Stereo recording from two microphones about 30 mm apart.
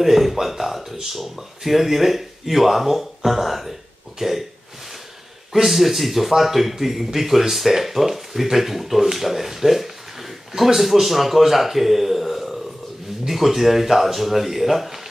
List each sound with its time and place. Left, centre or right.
0.0 s a sound: centre
1.0 s speech: centre
5.5 s speech: centre